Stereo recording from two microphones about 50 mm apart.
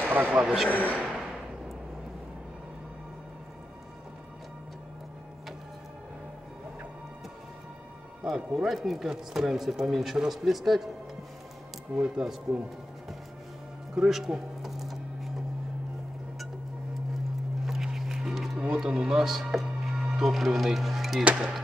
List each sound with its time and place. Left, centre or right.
0.1 s speech: right
0.7 s a man's voice: left
0.9 s a sound: centre
8.2 s speech: centre
11.9 s speech: centre
13.9 s speech: centre
14.6 s a sound: centre
17.6 s music: centre
18.9 s speech: centre
21.2 s speech: right